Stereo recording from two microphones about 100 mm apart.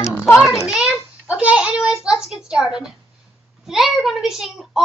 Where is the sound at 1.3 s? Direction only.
10° right (ahead or behind).